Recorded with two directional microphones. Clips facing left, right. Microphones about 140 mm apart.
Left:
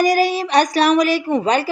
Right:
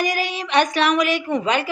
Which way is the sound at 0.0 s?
40° left (ahead or behind).